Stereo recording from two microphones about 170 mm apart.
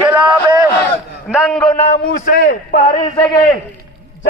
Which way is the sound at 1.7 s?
40° left (ahead or behind).